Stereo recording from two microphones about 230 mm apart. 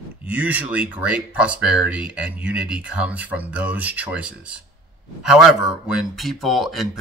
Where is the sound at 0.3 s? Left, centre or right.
Centre.